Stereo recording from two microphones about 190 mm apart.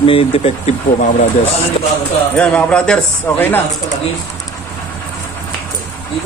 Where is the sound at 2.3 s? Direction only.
5° left (ahead or behind).